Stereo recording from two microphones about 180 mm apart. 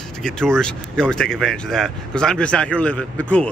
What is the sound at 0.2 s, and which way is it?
Speech, 5° left (ahead or behind).